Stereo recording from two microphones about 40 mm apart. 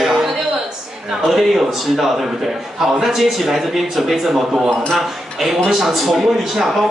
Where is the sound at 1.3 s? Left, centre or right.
Centre.